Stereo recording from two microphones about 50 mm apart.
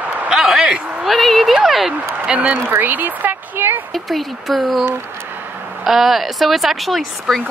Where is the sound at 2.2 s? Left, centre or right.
Right.